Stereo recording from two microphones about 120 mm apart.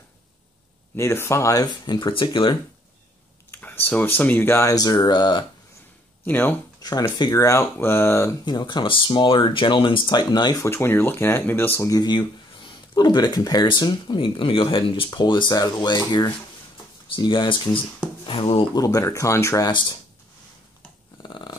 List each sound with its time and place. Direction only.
0.9 s speech: 20° left (ahead or behind); by 2.5 s 45° left (ahead or behind)
3.5 s speech: 15° left (ahead or behind); by 5.4 s 40° left (ahead or behind)
6.2 s speech: 15° left (ahead or behind)
6.8 s speech: 35° left (ahead or behind)
8.5 s speech: 40° left (ahead or behind)
18.8 s speech: 30° left (ahead or behind)
19.7 s speech: 40° left (ahead or behind)
21.2 s dog: 40° left (ahead or behind)